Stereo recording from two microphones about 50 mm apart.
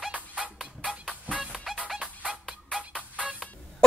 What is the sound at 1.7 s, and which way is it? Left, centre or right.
Music, centre.